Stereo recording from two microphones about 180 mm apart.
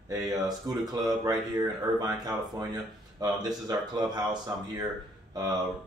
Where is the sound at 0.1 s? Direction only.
20° right (ahead or behind).